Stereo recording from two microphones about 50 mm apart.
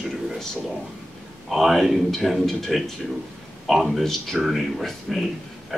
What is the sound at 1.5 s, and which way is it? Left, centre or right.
Speech, centre.